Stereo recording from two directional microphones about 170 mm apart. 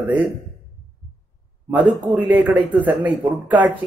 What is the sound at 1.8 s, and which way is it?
Speech, 30° right (ahead or behind).